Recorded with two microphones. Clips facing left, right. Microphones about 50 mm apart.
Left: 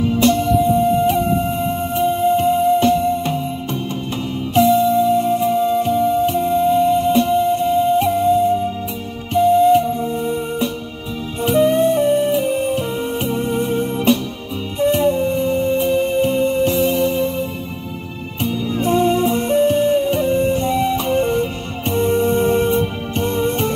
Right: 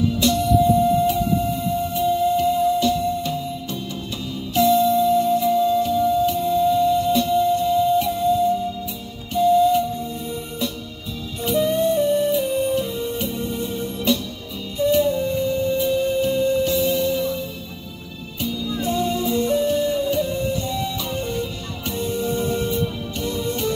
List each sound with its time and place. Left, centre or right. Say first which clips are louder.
0.0 s music: left 4 dB; left
4.6 s music: left 3 dB; left